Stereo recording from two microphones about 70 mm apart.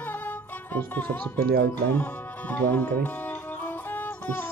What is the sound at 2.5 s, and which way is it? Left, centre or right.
Music, left.